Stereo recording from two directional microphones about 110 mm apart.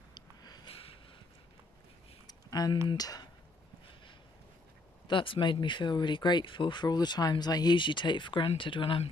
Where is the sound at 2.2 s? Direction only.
40° left (ahead or behind).